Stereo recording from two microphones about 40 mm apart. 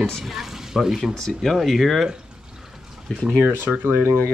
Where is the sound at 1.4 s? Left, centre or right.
Centre.